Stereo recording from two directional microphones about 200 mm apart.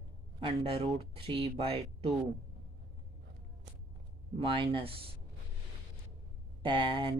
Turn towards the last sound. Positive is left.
turn(degrees=-25)  # may be behind; listen again after turning